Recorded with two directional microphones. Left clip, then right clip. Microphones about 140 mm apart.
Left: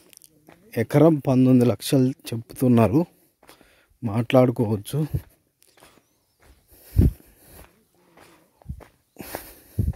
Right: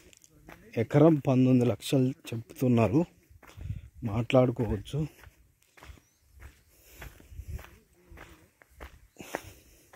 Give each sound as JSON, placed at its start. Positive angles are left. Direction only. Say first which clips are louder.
{"t": 0.7, "sound": "speech", "louder": "left 5 dB", "side_deg": 45}
{"t": 5.8, "sound": "a sound", "louder": "even", "side_deg": 5}
{"t": 7.6, "sound": "walk", "louder": "right 1 dB", "side_deg": 10}
{"t": 9.4, "sound": "wheeze", "louder": "left 5 dB", "side_deg": 60}